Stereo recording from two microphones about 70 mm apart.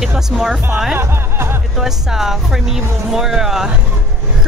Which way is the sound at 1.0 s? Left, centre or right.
Right.